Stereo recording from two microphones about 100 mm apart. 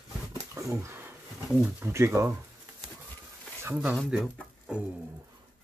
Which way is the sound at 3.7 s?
15° right (ahead or behind).